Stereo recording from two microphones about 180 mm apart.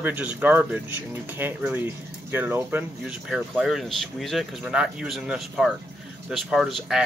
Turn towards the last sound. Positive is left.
turn(degrees=0)  # may be behind; listen again after turning